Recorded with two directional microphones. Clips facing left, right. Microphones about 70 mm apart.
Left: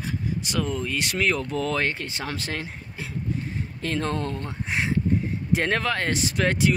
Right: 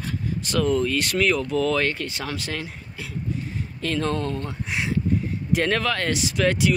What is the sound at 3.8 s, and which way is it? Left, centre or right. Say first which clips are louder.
Speech: right 2 dB; left.